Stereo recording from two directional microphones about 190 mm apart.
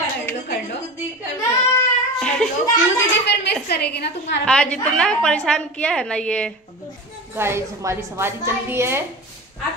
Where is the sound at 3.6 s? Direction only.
55° left (ahead or behind).